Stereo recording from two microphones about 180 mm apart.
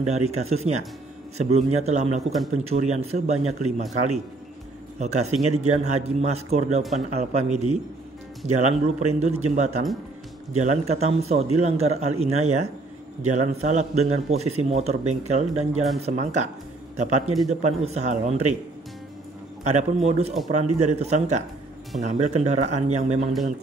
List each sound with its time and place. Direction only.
0.0 s a man's voice: 40° right (ahead or behind)
4.9 s a man's voice: 40° right (ahead or behind)
19.6 s a man's voice: 40° right (ahead or behind)